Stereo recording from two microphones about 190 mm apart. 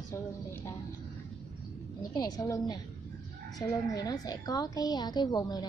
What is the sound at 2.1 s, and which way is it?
A woman's voice, 20° left (ahead or behind).